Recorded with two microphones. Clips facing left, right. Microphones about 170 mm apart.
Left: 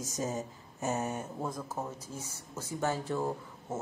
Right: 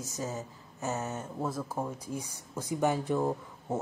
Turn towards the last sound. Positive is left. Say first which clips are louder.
# right 4 dB
turn(degrees=-15)  # may be behind; listen again after turning